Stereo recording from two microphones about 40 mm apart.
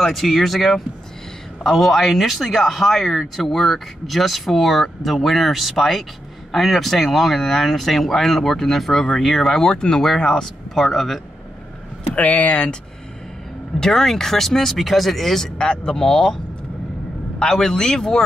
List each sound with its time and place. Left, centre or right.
0.0 s speech: centre
12.1 s speech: left
13.7 s speech: centre
15.5 s speech: left
17.4 s speech: centre